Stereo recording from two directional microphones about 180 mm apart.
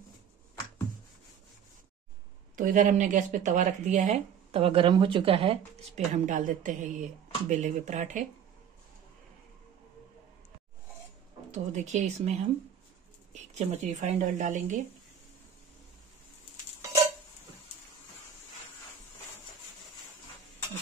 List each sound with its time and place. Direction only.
2.5 s speech: 45° right (ahead or behind)
11.5 s speech: 40° right (ahead or behind)